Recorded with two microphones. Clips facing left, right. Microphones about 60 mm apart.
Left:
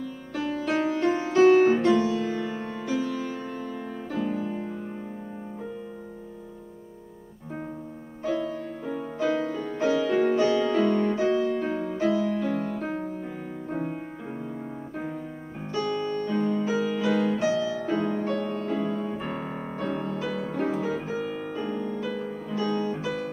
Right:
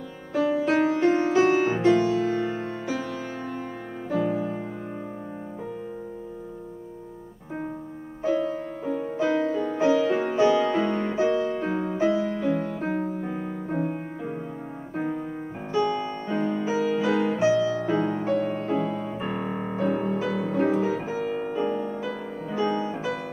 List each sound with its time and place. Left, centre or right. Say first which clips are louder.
0.3 s music: right 5 dB; centre
1.0 s music: right 4 dB; right
1.3 s music: left 3 dB; centre
2.9 s music: left 5 dB; right
8.2 s music: right 3 dB; right
9.8 s music: even; centre
15.7 s music: right 2 dB; centre
18.5 s music: right 2 dB; centre
21.3 s music: right 5 dB; centre